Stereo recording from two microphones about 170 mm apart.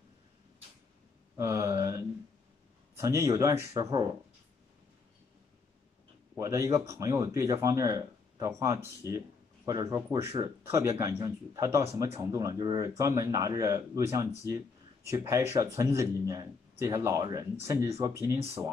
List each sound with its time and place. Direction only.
1.3 s a sound: 20° right (ahead or behind)
3.0 s speech: 20° right (ahead or behind)
6.3 s speech: 20° right (ahead or behind)